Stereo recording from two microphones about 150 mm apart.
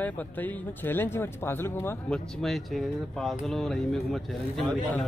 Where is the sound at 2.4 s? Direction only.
Centre (ahead or behind).